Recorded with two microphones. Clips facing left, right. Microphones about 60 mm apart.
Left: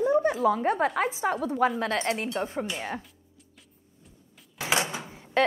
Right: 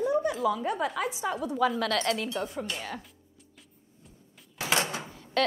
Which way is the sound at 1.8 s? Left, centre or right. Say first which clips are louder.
Even; left.